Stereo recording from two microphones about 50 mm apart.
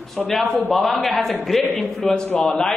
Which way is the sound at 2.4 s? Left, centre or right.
Centre.